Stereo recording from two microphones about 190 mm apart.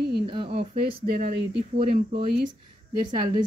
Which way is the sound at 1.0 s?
55° right (ahead or behind).